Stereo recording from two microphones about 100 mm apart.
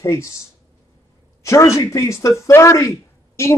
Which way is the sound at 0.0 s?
30° left (ahead or behind).